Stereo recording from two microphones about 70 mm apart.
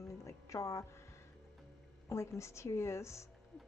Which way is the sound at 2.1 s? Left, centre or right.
Left.